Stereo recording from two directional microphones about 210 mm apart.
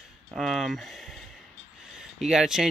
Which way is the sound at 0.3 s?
Centre (ahead or behind).